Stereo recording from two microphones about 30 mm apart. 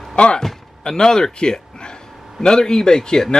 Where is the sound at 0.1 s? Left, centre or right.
Left.